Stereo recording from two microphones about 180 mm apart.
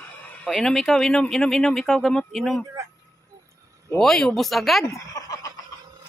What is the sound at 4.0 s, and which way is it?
Speech, 5° left (ahead or behind).